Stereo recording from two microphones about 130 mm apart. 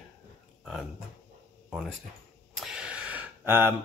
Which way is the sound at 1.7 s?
Centre (ahead or behind).